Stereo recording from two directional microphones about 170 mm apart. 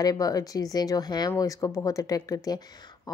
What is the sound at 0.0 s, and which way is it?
Speech, 20° left (ahead or behind).